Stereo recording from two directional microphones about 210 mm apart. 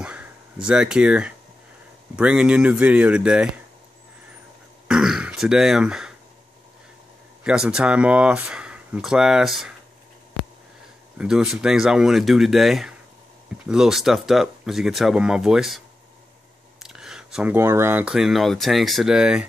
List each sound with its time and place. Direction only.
0.0 s a sound: 5° right (ahead or behind)
2.1 s speech: 5° right (ahead or behind)
4.8 s throat clearing: 5° right (ahead or behind)
7.4 s speech: 5° right (ahead or behind)
11.1 s speech: 5° right (ahead or behind)
16.8 s speech: centre (ahead or behind)